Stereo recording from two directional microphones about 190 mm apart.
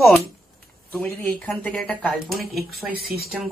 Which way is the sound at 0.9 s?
10° left (ahead or behind).